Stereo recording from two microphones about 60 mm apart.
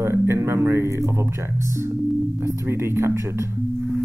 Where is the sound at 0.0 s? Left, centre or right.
Right.